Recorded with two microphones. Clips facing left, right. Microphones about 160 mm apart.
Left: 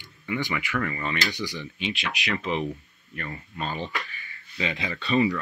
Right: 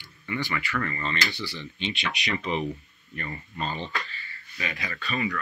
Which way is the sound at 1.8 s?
Centre (ahead or behind).